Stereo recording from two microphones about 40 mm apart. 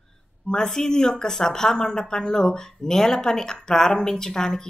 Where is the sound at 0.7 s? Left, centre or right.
Centre.